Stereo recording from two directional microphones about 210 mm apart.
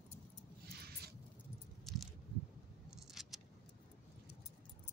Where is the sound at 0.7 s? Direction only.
50° right (ahead or behind).